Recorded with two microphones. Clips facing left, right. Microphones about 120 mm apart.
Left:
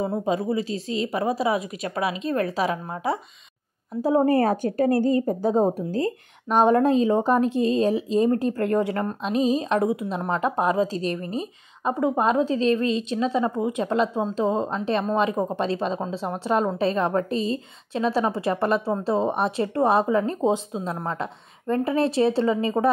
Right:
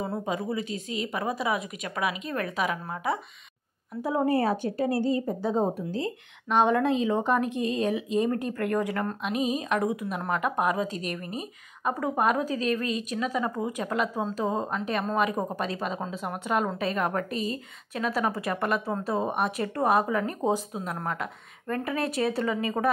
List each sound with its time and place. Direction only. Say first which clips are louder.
0.0 s a woman's voice: left 6 dB; 25° left (ahead or behind)